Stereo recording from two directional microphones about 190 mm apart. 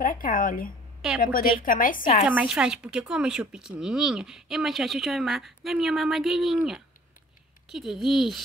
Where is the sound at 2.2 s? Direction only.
5° right (ahead or behind).